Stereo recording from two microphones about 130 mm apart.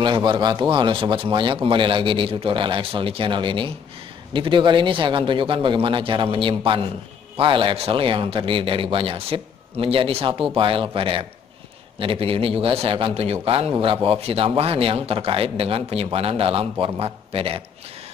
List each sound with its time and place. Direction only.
0.0 s a man's voice: 35° right (ahead or behind)